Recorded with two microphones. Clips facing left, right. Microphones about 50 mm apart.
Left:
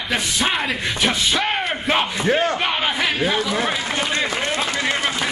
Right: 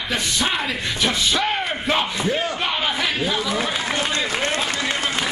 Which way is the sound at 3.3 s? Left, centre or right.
Left.